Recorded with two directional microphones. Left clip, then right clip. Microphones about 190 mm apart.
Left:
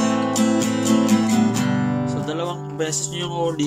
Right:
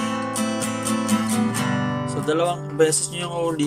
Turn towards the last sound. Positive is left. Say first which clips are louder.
# left 1 dB
turn(degrees=-5)  # may be behind; listen again after turning